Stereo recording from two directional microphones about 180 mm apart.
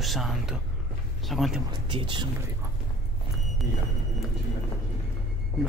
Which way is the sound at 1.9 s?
30° right (ahead or behind).